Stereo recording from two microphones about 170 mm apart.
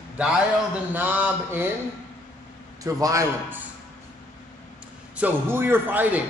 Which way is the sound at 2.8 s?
20° right (ahead or behind).